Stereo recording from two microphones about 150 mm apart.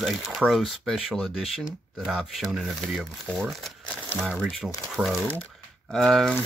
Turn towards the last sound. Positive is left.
turn(degrees=0)  # may be behind; listen again after turning